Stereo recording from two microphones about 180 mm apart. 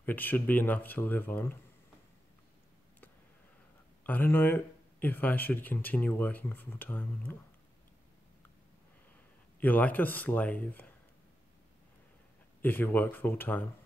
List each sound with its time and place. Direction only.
0.0 s speech: 10° left (ahead or behind)
4.0 s speech: 10° left (ahead or behind)
9.6 s speech: 10° left (ahead or behind)
12.6 s speech: 10° left (ahead or behind)